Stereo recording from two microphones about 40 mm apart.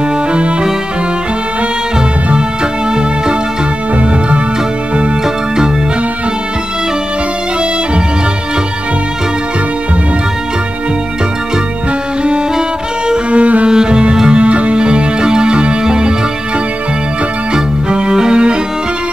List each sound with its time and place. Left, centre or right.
13.3 s cello: right
13.7 s cello: right
14.4 s music: right
17.8 s music: right